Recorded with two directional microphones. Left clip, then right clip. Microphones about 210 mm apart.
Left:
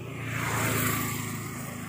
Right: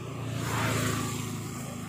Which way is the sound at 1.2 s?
15° left (ahead or behind).